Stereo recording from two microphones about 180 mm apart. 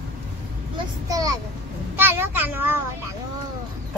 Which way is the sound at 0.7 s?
20° right (ahead or behind).